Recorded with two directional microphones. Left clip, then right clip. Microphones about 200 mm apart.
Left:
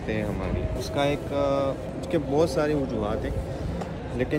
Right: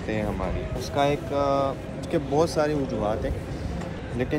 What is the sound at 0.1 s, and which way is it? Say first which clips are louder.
Speech: right 1 dB; centre (ahead or behind).